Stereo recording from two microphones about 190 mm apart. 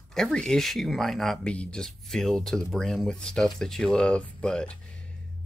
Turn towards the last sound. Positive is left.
turn(degrees=5)  # may be behind; listen again after turning